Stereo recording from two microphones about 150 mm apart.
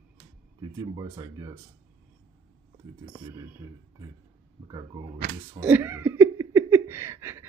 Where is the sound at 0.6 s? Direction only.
25° right (ahead or behind).